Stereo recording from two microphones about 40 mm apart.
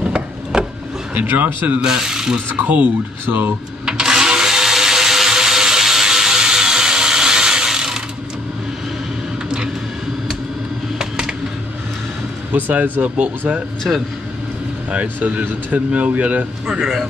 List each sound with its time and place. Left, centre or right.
0.5 s a sound: centre
1.1 s speech: right
1.8 s speech: centre
2.5 s speech: right
3.3 s speech: right
3.8 s a sound: centre
11.0 s a sound: centre
12.9 s speech: right
13.9 s speech: centre
15.1 s speech: right
15.9 s speech: right